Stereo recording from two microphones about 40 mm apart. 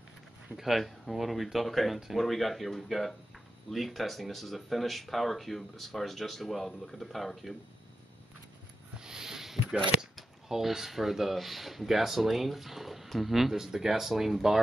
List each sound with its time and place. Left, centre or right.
0.6 s speech: centre
9.0 s a sound: centre
10.5 s speech: centre